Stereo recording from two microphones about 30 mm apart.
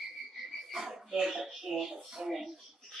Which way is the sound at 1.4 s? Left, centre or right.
Centre.